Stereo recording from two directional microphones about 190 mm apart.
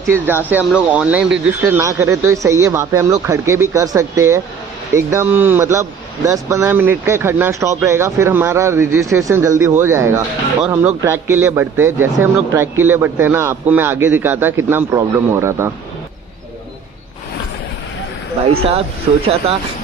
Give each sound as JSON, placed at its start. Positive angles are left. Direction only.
{"t": 0.1, "sound": "speech", "side_deg": -10}
{"t": 18.4, "sound": "speech", "side_deg": -30}